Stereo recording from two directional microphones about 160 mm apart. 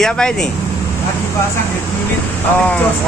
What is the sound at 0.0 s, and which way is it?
Speech, 5° left (ahead or behind).